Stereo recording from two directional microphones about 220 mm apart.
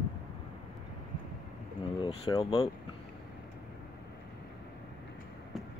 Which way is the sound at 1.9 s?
25° left (ahead or behind).